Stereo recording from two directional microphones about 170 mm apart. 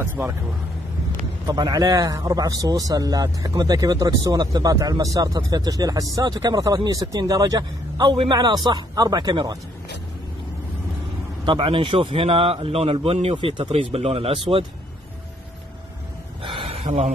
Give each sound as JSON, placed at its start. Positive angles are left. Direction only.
{"t": 0.0, "sound": "speech", "side_deg": -15}
{"t": 1.5, "sound": "a man's voice", "side_deg": -25}
{"t": 11.4, "sound": "a man's voice", "side_deg": -30}
{"t": 16.4, "sound": "a sound", "side_deg": -35}